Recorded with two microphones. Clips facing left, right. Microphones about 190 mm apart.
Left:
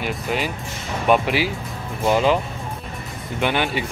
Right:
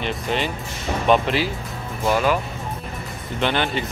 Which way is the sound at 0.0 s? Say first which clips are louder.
Even; 5° left (ahead or behind).